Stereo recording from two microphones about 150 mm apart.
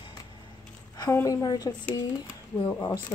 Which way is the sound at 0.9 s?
20° left (ahead or behind).